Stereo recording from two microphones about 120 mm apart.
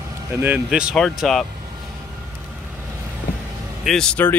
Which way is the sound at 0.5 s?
5° right (ahead or behind).